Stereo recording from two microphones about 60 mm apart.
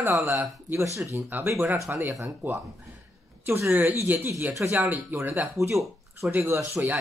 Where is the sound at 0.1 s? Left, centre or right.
Right.